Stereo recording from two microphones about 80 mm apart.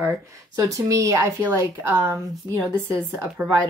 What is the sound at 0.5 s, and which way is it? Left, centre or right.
Speech, right.